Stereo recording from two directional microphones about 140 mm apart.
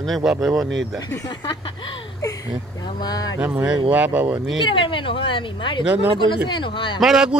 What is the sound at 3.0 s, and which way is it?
Speech, 30° left (ahead or behind).